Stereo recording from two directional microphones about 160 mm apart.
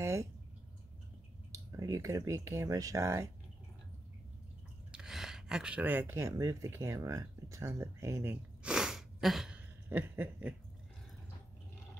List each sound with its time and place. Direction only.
0.0 s drip: 15° right (ahead or behind)
1.5 s speech: 20° right (ahead or behind)
4.9 s speech: 5° right (ahead or behind)
8.6 s a sound: 5° right (ahead or behind)